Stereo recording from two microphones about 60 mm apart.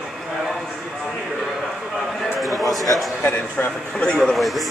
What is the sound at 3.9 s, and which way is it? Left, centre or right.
Speech, centre.